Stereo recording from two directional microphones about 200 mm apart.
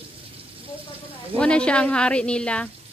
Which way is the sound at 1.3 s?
5° left (ahead or behind).